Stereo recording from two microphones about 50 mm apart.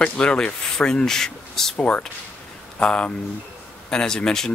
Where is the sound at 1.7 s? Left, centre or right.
Left; by 4.5 s centre.